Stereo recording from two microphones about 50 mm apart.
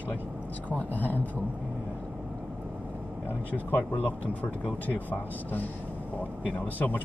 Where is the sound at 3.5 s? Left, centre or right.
Left.